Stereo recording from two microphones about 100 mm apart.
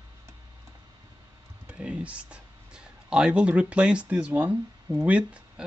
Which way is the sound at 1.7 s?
10° right (ahead or behind).